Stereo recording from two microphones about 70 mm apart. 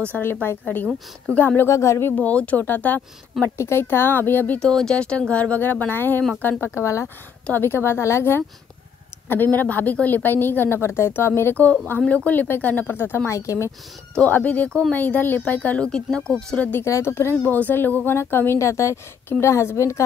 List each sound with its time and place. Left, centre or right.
0.2 s speech: left
1.7 s a woman's voice: left
2.1 s speech: left
3.5 s speech: left
4.6 s speech: centre; by 6.2 s left
6.6 s a woman's voice: left
7.5 s a woman's voice: left
14.3 s speech: left
16.8 s a woman's voice: left
17.5 s a woman's voice: left